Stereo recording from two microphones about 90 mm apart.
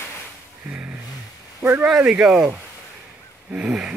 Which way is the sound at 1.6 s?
20° right (ahead or behind).